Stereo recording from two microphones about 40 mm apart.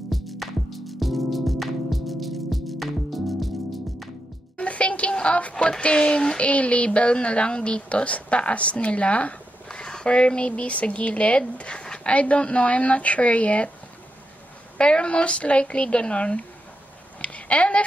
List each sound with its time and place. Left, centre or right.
0.1 s music: centre
4.6 s music: left
5.1 s a sound: left
5.5 s a woman's voice: left
6.4 s a woman's voice: left
9.7 s a sound: centre
10.0 s speech: left
12.1 s speech: left
14.8 s a woman's voice: left
17.2 s a sound: left